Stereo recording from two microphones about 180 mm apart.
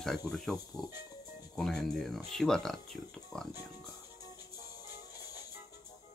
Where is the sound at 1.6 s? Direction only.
5° left (ahead or behind).